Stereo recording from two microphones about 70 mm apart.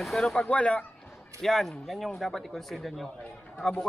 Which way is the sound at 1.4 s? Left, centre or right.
Centre.